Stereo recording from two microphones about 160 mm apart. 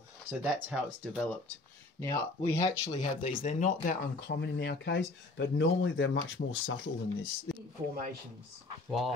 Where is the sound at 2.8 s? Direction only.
40° left (ahead or behind).